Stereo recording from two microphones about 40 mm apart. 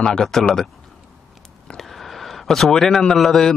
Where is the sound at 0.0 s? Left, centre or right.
Centre.